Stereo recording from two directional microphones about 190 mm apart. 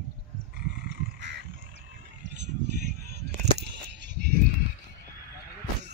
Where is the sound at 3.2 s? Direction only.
60° right (ahead or behind).